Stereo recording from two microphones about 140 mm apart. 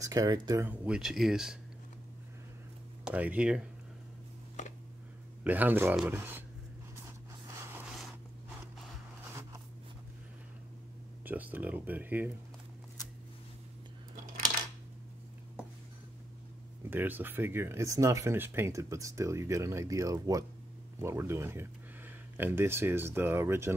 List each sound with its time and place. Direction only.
0.0 s speech: 25° right (ahead or behind)
0.7 s speech: 5° right (ahead or behind)
3.1 s speech: 10° right (ahead or behind)
5.4 s speech: 10° right (ahead or behind)
7.1 s a sound: 20° right (ahead or behind)
9.3 s a sound: 20° right (ahead or behind)
11.2 s speech: 10° right (ahead or behind)
16.9 s speech: 15° right (ahead or behind)